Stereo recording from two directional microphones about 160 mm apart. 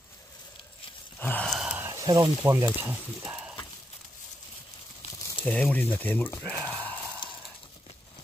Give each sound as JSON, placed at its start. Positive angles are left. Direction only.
{"t": 1.2, "sound": "sigh", "side_deg": 5}
{"t": 1.9, "sound": "speech", "side_deg": -20}
{"t": 3.3, "sound": "a sound", "side_deg": -10}
{"t": 5.4, "sound": "speech", "side_deg": 5}